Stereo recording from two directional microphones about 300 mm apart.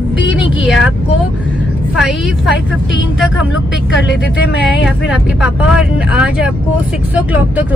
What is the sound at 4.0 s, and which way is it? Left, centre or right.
Speech, left.